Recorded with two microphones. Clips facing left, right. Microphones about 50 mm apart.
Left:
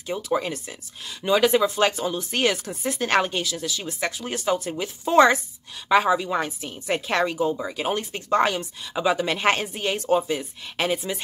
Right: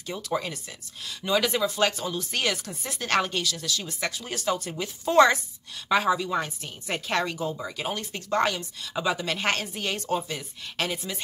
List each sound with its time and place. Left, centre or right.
0.0 s a woman's voice: centre